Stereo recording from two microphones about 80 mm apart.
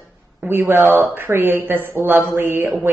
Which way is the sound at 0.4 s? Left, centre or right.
Right.